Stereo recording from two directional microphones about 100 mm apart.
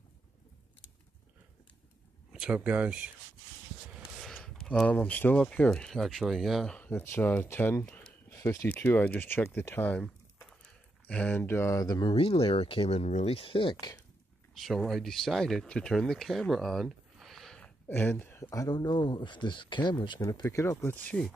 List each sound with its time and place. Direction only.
2.3 s speech: 10° right (ahead or behind)
4.2 s speech: 5° left (ahead or behind)
6.9 s speech: 20° left (ahead or behind)
7.8 s a sound: 10° left (ahead or behind)
8.3 s a sound: 30° left (ahead or behind)
8.6 s speech: 20° left (ahead or behind)
11.8 s speech: 40° left (ahead or behind)
12.1 s speech: 70° left (ahead or behind)
14.6 s speech: centre (ahead or behind)
17.8 s speech: 20° left (ahead or behind)
18.5 s speech: 40° left (ahead or behind)
20.2 s speech: 35° left (ahead or behind); by 21.1 s 20° left (ahead or behind)
21.1 s speech: 5° left (ahead or behind)